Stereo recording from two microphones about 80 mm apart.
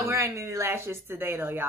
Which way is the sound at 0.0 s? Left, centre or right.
Right.